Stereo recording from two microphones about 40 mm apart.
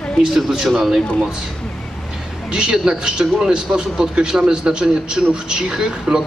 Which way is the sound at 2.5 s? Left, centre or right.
Centre.